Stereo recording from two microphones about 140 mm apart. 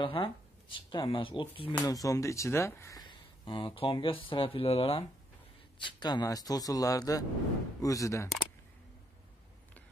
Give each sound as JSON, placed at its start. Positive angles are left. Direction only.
{"t": 0.0, "sound": "speech", "side_deg": 35}
{"t": 1.9, "sound": "speech", "side_deg": 25}